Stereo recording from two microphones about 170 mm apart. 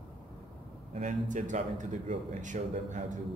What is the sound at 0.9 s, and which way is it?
Speech, 45° right (ahead or behind).